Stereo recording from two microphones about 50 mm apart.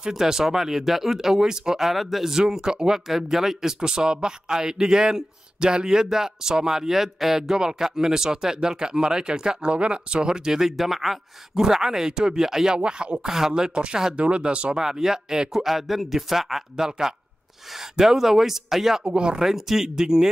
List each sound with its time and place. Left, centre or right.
0.0 s speech: centre